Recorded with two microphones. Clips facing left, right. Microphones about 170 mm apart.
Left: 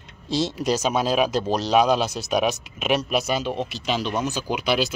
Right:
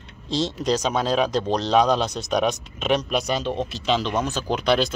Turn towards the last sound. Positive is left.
turn(degrees=5)  # may be behind; listen again after turning